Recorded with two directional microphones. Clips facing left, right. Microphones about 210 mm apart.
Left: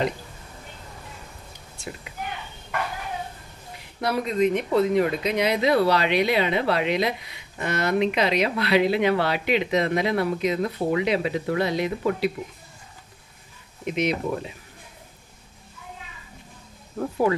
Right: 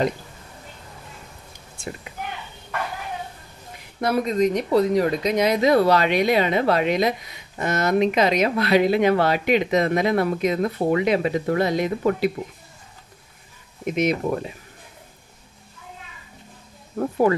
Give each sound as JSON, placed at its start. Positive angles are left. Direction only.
{"t": 4.0, "sound": "speech", "side_deg": -45}
{"t": 13.8, "sound": "speech", "side_deg": -45}
{"t": 17.3, "sound": "speech", "side_deg": -50}